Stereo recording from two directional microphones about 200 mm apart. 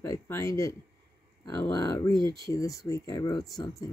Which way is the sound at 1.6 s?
15° left (ahead or behind).